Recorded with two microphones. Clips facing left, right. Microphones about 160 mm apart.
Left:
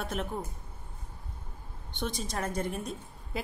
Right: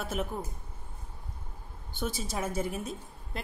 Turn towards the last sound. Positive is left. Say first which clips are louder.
# left 2 dB
turn(degrees=-5)  # may be behind; listen again after turning